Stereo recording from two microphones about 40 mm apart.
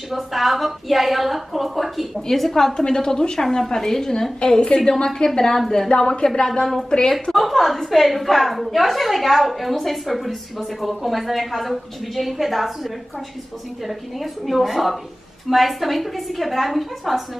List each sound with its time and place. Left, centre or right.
0.1 s a woman's voice: centre
2.8 s a woman's voice: centre
4.4 s a woman's voice: left
6.6 s a woman's voice: centre
7.3 s a woman's voice: centre